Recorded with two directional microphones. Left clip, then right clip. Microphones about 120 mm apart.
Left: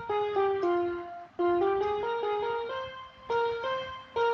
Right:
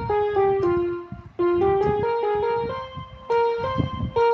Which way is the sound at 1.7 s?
45° left (ahead or behind).